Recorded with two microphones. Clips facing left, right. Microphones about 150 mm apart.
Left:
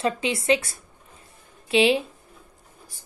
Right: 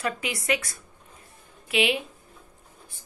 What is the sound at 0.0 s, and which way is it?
A woman's voice, 25° left (ahead or behind).